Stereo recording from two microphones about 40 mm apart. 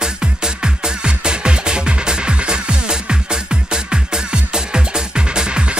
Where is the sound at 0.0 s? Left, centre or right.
Centre.